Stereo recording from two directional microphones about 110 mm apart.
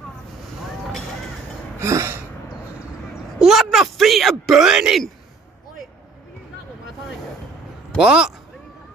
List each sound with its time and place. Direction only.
1.8 s sneeze: 25° right (ahead or behind)
3.3 s speech: centre (ahead or behind)
8.0 s speech: 10° right (ahead or behind)